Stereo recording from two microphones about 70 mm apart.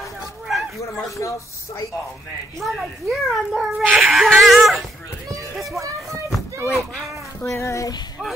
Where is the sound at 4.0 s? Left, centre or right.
Centre.